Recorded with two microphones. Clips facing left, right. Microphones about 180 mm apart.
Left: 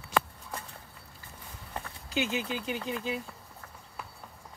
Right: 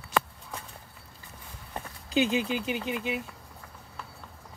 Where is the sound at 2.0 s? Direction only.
15° right (ahead or behind).